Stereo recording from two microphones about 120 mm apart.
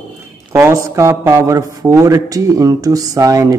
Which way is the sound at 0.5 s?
20° right (ahead or behind).